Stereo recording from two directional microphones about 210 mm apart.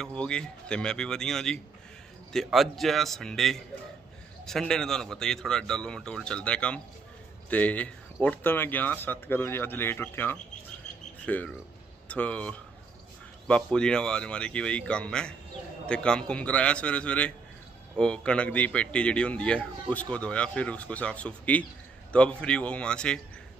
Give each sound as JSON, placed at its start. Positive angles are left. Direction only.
{"t": 0.0, "sound": "a man's voice", "side_deg": 5}